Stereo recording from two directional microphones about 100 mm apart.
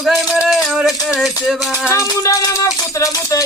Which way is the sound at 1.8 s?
35° left (ahead or behind).